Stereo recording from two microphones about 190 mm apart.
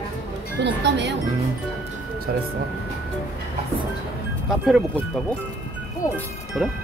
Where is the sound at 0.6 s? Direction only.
65° right (ahead or behind).